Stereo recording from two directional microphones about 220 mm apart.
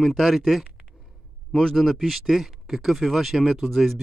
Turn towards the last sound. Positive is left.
turn(degrees=0)  # may be behind; listen again after turning